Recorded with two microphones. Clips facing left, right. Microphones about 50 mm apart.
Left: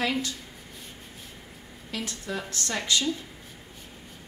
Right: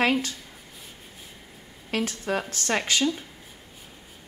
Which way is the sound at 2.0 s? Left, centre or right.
Right.